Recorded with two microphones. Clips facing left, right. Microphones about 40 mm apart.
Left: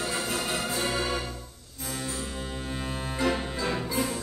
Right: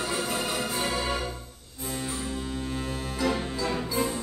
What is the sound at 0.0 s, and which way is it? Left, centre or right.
Music, centre.